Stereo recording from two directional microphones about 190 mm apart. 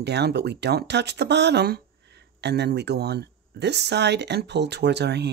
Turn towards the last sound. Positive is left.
turn(degrees=-60)  # may be behind; listen again after turning